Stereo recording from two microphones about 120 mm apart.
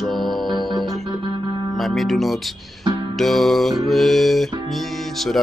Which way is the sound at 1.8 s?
Centre (ahead or behind).